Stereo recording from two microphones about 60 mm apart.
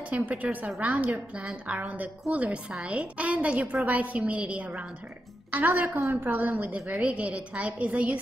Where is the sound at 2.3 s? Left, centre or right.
Right.